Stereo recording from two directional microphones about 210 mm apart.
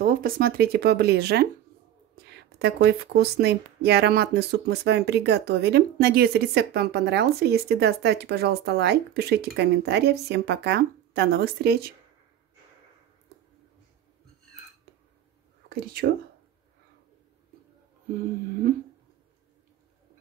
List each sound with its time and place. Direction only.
0.0 s speech: 40° right (ahead or behind)
15.7 s speech: 45° right (ahead or behind)